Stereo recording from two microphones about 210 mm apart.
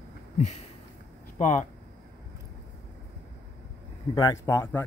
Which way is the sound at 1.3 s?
35° left (ahead or behind).